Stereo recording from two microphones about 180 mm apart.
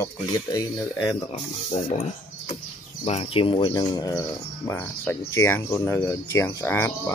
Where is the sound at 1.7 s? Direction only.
45° left (ahead or behind).